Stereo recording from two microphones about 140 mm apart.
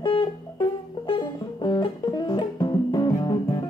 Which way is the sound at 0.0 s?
30° left (ahead or behind).